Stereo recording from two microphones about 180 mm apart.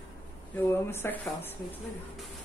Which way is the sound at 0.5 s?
10° left (ahead or behind).